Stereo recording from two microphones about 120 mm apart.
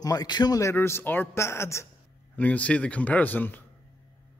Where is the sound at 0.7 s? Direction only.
20° left (ahead or behind).